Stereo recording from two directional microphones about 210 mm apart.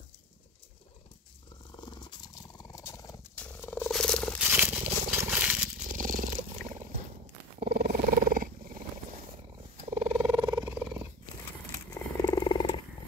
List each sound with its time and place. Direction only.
1.8 s purr: 20° left (ahead or behind); by 4.5 s 5° left (ahead or behind)
4.5 s a sound: 10° right (ahead or behind)
5.9 s purr: 40° right (ahead or behind)
7.6 s roaring cats: 45° right (ahead or behind)
9.8 s purr: 35° right (ahead or behind)
10.7 s purr: 10° right (ahead or behind)
11.9 s wild animals: 20° left (ahead or behind)